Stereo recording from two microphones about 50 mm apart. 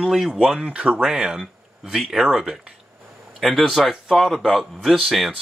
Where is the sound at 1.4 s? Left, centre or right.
Centre.